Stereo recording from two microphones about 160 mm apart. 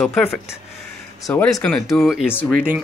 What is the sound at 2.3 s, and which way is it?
Speech, 10° left (ahead or behind).